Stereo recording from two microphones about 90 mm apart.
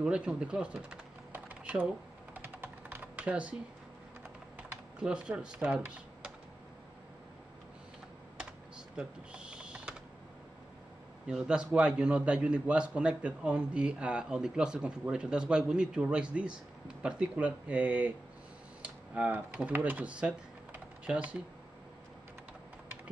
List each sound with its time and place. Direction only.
0.0 s speech: 10° right (ahead or behind)
2.3 s typing: 20° right (ahead or behind)
4.9 s a man's voice: 10° right (ahead or behind)
8.4 s typing: 10° right (ahead or behind)
11.2 s a man's voice: 10° right (ahead or behind)